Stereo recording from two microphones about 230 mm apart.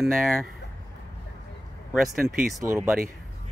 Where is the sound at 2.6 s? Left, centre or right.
Centre.